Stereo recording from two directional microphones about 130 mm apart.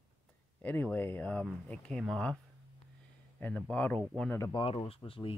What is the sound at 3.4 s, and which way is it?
Speech, 10° left (ahead or behind).